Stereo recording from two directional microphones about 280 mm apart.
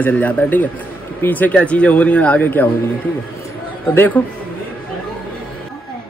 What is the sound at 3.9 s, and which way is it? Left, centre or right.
Speech, centre.